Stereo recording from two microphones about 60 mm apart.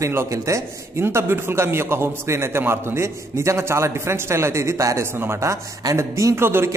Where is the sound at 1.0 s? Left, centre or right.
Right.